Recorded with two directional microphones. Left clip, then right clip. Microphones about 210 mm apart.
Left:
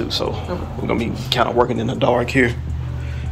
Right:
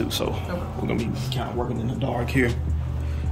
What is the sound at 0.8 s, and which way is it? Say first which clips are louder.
Speech: left 10 dB; centre (ahead or behind).